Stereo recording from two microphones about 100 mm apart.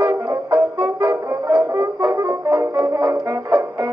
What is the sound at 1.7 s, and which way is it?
Brass instrument, 45° right (ahead or behind).